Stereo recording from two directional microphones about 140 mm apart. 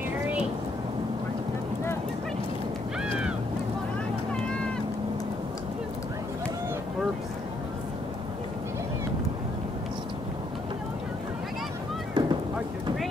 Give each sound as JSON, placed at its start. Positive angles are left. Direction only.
{"t": 12.1, "sound": "boat", "side_deg": -30}